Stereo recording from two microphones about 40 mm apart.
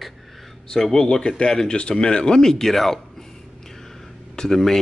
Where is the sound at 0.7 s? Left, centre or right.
Centre.